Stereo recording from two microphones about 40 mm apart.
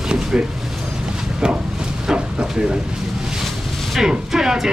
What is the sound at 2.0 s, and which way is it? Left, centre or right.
Speech, centre.